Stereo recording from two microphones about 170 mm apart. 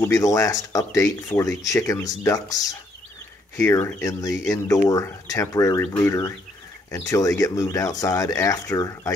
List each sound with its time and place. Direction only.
0.0 s speech: 20° left (ahead or behind)